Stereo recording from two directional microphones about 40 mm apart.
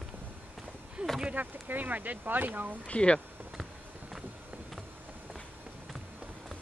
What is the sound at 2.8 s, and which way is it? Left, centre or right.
Speech, left.